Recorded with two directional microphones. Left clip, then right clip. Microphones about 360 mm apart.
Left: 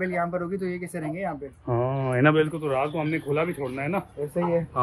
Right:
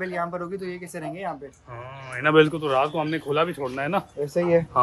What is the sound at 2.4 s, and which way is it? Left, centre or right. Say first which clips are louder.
Speech: right 5 dB; centre.